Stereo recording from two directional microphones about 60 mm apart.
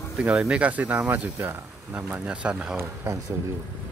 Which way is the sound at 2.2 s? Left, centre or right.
Centre.